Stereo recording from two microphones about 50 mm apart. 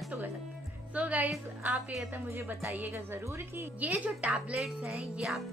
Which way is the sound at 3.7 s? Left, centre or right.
Right.